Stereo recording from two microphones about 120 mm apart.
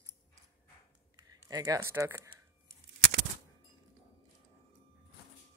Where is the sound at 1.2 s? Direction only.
35° right (ahead or behind).